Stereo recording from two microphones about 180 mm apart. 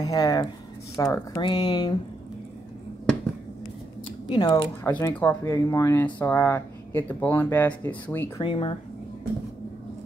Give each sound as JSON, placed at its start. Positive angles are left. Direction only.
{"t": 0.0, "sound": "speech", "side_deg": 20}
{"t": 4.3, "sound": "speech", "side_deg": 20}
{"t": 4.9, "sound": "speech", "side_deg": 10}
{"t": 8.4, "sound": "speech", "side_deg": 30}